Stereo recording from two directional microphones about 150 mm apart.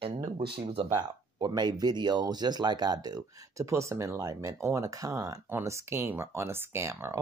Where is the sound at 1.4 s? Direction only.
25° right (ahead or behind).